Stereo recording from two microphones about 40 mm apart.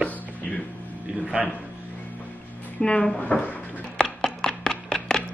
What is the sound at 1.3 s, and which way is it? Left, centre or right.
Speech, right.